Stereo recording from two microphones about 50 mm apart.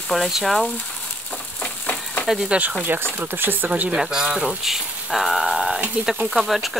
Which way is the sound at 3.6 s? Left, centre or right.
Right.